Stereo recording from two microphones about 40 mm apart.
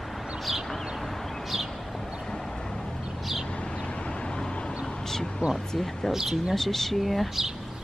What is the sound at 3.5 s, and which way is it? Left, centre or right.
Vehicle, left.